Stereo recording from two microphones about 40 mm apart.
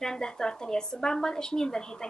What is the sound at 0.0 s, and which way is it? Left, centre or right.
A woman's voice, centre.